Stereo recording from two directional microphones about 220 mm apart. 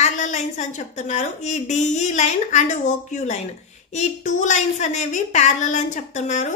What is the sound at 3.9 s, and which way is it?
Speech, 30° left (ahead or behind).